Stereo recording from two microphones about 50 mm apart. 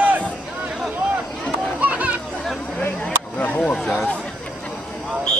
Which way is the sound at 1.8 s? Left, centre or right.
Right.